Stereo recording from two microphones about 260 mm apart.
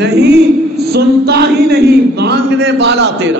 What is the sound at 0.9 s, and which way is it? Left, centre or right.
A man's voice, right.